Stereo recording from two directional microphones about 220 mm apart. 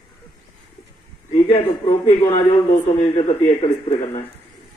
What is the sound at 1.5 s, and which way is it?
A man's voice, 25° left (ahead or behind).